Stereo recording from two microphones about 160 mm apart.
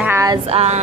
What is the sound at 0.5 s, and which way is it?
Music, 40° right (ahead or behind).